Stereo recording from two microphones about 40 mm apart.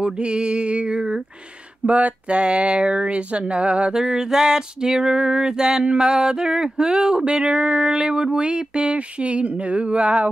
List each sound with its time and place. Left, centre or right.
0.0 s female singing: right
1.9 s female singing: right
3.9 s female singing: centre; by 10.2 s right